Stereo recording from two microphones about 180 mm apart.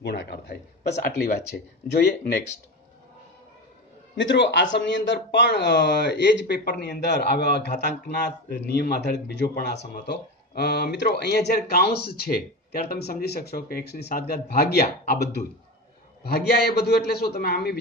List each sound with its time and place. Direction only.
0.0 s a man's voice: 65° left (ahead or behind)
4.2 s speech: 90° left; by 6.6 s 70° left (ahead or behind)
6.6 s a man's voice: 55° left (ahead or behind)
16.3 s a man's voice: 60° left (ahead or behind)